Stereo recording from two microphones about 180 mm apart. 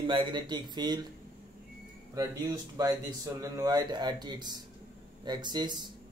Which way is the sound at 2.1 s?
20° right (ahead or behind).